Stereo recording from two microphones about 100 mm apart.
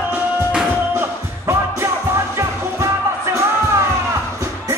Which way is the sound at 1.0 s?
30° right (ahead or behind).